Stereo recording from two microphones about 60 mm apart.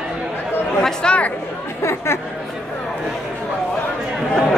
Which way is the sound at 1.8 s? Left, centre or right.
Left.